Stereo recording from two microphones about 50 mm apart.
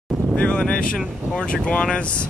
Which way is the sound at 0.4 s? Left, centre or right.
Left.